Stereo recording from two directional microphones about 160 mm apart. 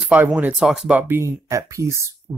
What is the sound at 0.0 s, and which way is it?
Speech, 5° right (ahead or behind).